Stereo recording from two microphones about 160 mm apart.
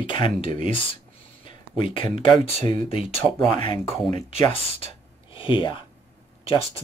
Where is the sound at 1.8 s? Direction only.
30° left (ahead or behind).